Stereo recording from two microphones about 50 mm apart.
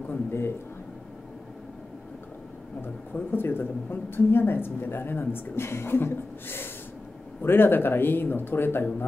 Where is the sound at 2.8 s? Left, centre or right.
Left.